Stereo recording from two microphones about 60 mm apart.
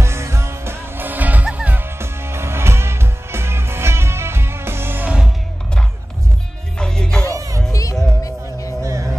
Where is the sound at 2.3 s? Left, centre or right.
Right.